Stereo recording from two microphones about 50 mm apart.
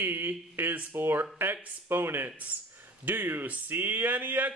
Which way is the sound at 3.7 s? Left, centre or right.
Right.